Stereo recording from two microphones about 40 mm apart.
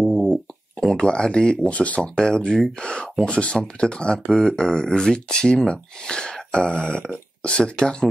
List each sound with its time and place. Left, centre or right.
0.1 s a sound: centre
0.9 s speech: left
1.7 s speech: left
3.5 s speech: centre